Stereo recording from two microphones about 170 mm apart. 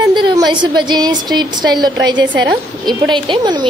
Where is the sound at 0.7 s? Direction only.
25° right (ahead or behind).